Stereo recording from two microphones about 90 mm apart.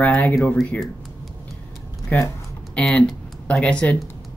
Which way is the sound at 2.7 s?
10° left (ahead or behind).